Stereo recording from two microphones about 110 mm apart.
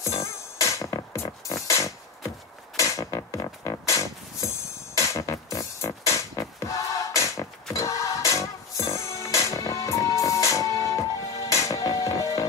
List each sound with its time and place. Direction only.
0.0 s music: 25° left (ahead or behind)